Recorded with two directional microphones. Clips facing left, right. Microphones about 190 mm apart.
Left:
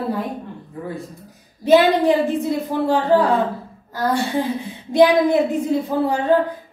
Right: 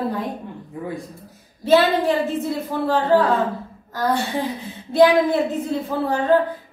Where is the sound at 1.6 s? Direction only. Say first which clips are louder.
Left 3 dB; 15° left (ahead or behind).